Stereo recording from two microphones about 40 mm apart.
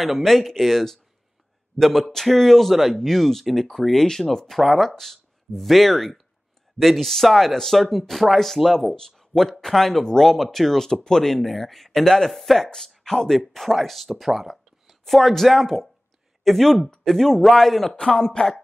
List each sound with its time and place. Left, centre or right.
0.0 s speech: centre
17.8 s speech: centre